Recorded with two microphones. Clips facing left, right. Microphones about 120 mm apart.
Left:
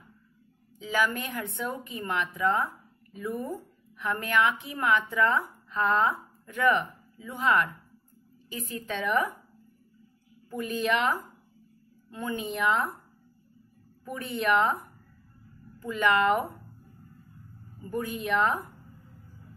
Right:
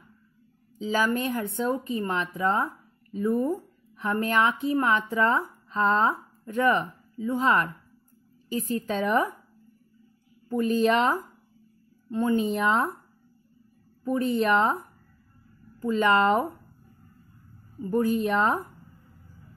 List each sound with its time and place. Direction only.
0.7 s speech: 30° right (ahead or behind)
10.5 s speech: 35° right (ahead or behind)
14.0 s speech: 35° right (ahead or behind)
15.8 s speech: 35° right (ahead or behind)
17.8 s speech: 35° right (ahead or behind)